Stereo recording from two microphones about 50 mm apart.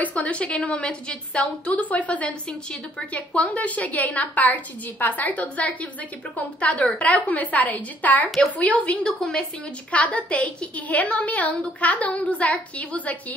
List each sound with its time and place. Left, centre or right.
0.0 s a woman's voice: left
9.0 s a woman's voice: centre
9.8 s a woman's voice: left